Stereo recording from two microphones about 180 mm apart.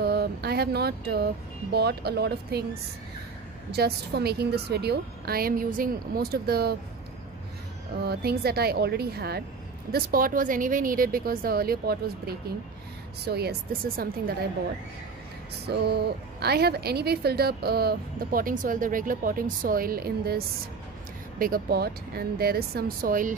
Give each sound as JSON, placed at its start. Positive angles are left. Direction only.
{"t": 0.0, "sound": "a sound", "side_deg": -60}
{"t": 1.7, "sound": "speech", "side_deg": -65}
{"t": 3.7, "sound": "speech", "side_deg": -60}
{"t": 8.0, "sound": "a woman's voice", "side_deg": -60}
{"t": 15.7, "sound": "speech", "side_deg": -65}